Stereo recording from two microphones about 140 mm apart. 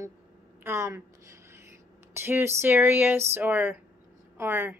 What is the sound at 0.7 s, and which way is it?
A woman's voice, 20° right (ahead or behind).